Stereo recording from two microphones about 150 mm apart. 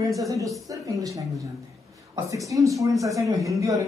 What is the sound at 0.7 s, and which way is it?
Speech, 20° right (ahead or behind).